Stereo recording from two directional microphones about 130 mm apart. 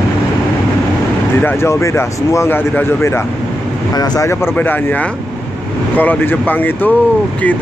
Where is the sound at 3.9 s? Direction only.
30° left (ahead or behind).